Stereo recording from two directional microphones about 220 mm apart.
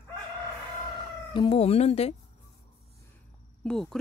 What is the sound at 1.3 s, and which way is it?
Speech, 25° left (ahead or behind).